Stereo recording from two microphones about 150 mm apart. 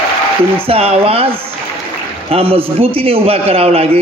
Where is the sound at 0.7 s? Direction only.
40° right (ahead or behind).